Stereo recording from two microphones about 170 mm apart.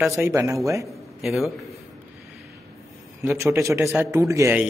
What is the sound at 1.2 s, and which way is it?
Speech, centre (ahead or behind).